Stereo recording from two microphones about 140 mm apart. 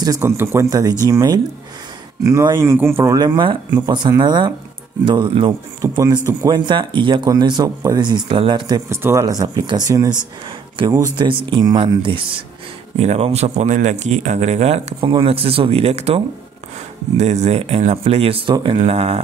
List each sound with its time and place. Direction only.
0.0 s speech: 20° right (ahead or behind); by 5.5 s 35° right (ahead or behind)
5.8 s speech: 25° right (ahead or behind)
8.8 s speech: 20° right (ahead or behind)
10.8 s speech: 40° right (ahead or behind)
12.9 s speech: 50° right (ahead or behind)
17.2 s speech: 50° right (ahead or behind)